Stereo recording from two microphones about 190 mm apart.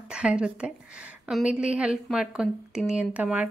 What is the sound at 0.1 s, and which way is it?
Speech, 5° right (ahead or behind).